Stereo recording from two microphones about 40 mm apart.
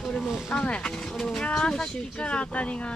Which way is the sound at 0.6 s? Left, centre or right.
Left.